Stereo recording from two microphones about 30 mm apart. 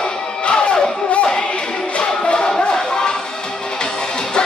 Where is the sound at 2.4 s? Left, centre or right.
Left.